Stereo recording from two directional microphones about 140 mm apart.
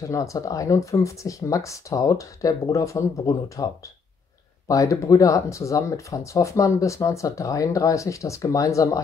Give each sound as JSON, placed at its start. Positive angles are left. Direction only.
{"t": 0.0, "sound": "speech", "side_deg": 20}